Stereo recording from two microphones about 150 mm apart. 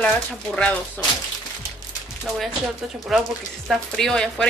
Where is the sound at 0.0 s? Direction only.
5° left (ahead or behind).